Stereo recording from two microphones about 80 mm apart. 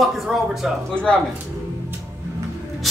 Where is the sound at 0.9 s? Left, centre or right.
Centre.